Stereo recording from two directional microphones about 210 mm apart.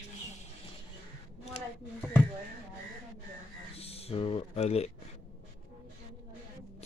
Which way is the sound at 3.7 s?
30° left (ahead or behind).